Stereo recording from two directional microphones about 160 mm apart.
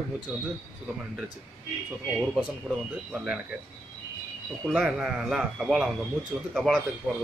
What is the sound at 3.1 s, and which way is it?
Speech, 5° right (ahead or behind).